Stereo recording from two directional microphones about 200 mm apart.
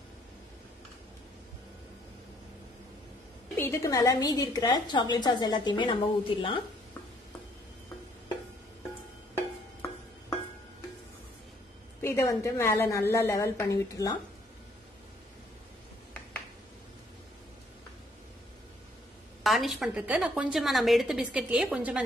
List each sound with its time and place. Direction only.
3.5 s a woman's voice: 15° left (ahead or behind)
12.0 s a woman's voice: 10° left (ahead or behind)
19.4 s a woman's voice: centre (ahead or behind)